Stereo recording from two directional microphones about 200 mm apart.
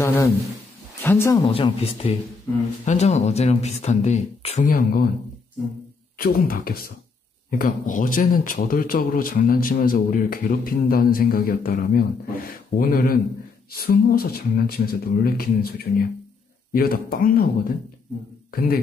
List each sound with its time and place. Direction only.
0.0 s speech: 15° left (ahead or behind)
1.4 s speech: 25° left (ahead or behind)
4.6 s a man's voice: 45° left (ahead or behind)
6.1 s a man's voice: 50° left (ahead or behind)
18.5 s speech: 45° left (ahead or behind)